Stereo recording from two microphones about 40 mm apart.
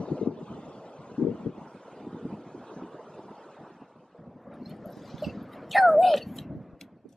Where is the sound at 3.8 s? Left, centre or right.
Centre.